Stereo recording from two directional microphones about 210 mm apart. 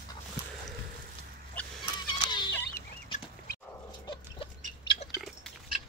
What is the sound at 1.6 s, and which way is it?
Rodents, 5° left (ahead or behind).